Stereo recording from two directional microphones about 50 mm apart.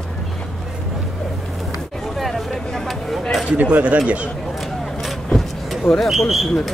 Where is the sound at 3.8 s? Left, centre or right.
Right.